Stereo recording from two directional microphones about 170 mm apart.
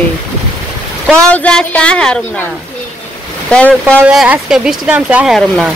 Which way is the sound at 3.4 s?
5° left (ahead or behind).